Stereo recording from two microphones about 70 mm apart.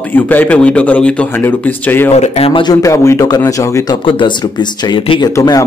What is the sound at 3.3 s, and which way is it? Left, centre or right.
Speech, left.